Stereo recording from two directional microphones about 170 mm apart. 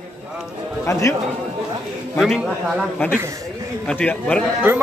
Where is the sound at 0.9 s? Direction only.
20° left (ahead or behind).